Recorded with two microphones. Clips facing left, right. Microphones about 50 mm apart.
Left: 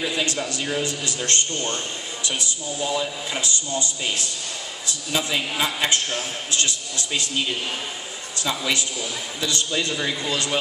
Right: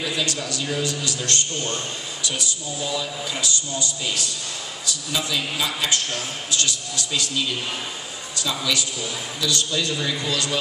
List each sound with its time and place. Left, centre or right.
0.0 s a man's voice: left